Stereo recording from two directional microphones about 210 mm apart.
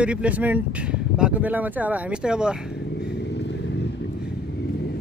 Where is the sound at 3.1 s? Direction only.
55° left (ahead or behind).